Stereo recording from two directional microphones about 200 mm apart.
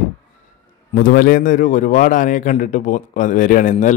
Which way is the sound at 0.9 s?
45° left (ahead or behind).